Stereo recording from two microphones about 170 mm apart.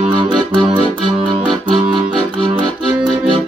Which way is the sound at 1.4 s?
30° right (ahead or behind).